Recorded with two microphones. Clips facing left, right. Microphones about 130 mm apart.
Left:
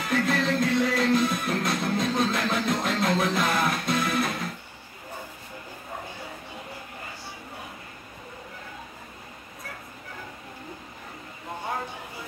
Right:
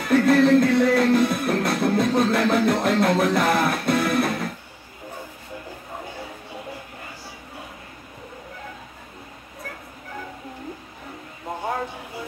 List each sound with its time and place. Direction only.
0.1 s music: 55° right (ahead or behind)